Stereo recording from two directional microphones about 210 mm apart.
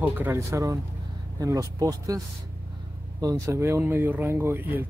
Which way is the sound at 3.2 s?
15° right (ahead or behind).